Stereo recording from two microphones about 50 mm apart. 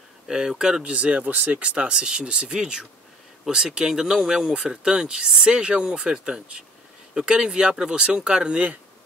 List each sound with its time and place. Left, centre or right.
0.3 s speech: centre
0.9 s speech: right